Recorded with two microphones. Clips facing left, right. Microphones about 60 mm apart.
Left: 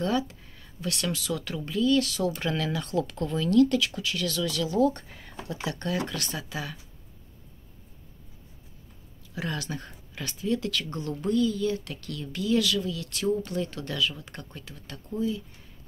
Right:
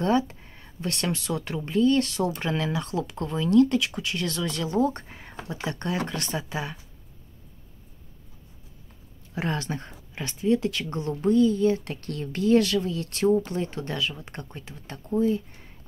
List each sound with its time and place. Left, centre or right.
0.0 s speech: right
9.3 s speech: right